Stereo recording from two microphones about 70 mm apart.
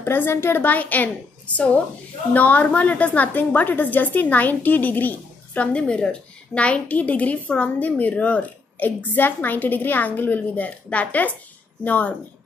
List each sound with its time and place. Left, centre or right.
0.0 s a woman's voice: left